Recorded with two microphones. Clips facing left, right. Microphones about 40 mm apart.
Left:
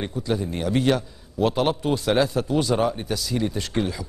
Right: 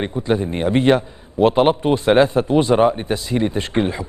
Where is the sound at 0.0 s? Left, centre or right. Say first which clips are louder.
Right 6 dB; right.